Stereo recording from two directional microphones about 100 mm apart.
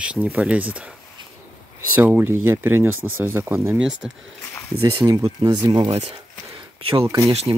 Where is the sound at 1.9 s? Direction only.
20° right (ahead or behind).